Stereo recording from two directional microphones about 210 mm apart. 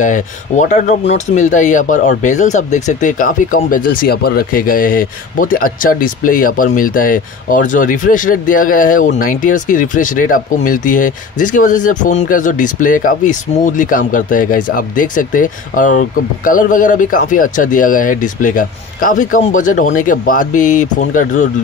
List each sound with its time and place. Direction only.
0.0 s speech: 35° left (ahead or behind)